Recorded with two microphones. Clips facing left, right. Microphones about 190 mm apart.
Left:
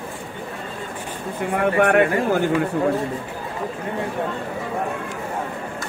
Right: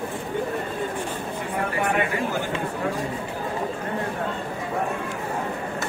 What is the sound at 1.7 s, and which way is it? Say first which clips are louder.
Speech: left 8 dB; 65° left (ahead or behind).